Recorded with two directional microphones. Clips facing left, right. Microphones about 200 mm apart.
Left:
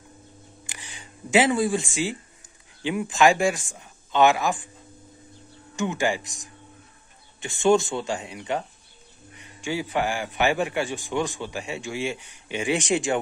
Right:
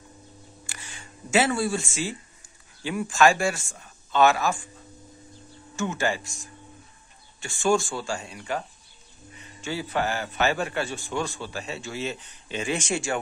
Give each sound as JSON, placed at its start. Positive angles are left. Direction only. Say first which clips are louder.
{"t": 0.7, "sound": "a sound", "louder": "left 1 dB", "side_deg": 15}
{"t": 2.8, "sound": "a man's voice", "louder": "left 1 dB", "side_deg": 20}
{"t": 5.8, "sound": "a man's voice", "louder": "left 2 dB", "side_deg": 15}